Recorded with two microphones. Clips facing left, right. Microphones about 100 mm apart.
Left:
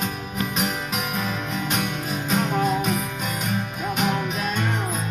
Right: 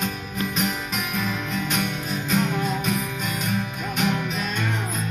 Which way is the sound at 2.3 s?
20° left (ahead or behind).